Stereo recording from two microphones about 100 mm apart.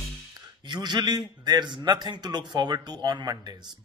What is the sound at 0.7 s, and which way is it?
A man's voice, 45° right (ahead or behind).